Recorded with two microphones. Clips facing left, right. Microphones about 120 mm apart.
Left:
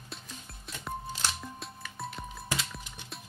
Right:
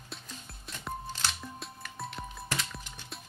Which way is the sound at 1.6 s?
Centre (ahead or behind).